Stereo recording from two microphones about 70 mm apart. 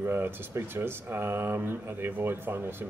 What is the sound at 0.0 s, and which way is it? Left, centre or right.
A man's voice, right.